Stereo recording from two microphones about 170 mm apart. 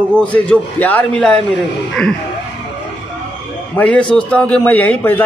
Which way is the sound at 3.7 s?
10° left (ahead or behind).